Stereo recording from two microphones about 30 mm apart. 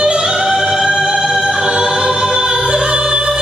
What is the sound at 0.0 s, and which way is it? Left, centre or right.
Music, right.